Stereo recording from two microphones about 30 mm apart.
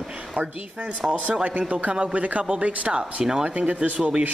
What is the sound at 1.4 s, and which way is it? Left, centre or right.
Speech, right.